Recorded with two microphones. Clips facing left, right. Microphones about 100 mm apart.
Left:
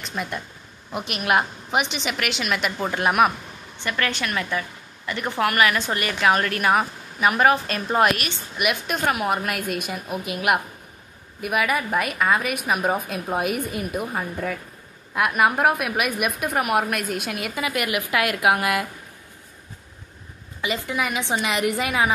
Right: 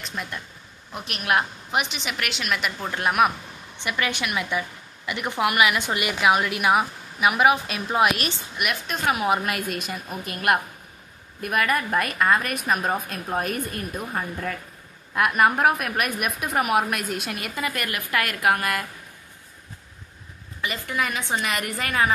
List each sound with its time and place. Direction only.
0.0 s a woman's voice: 5° left (ahead or behind)
3.7 s a woman's voice: 15° right (ahead or behind); by 18.9 s 15° left (ahead or behind)
20.6 s a woman's voice: 20° left (ahead or behind)